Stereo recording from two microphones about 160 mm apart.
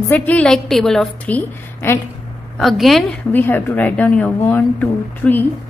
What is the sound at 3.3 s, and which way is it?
A woman's voice, 10° left (ahead or behind).